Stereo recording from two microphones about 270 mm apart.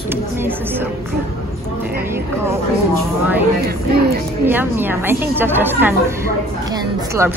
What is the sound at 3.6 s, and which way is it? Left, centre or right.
Music, right.